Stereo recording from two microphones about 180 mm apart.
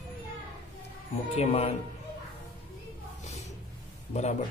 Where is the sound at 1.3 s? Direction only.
35° left (ahead or behind).